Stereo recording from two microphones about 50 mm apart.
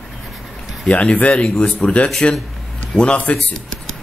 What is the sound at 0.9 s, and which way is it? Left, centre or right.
A man's voice, left.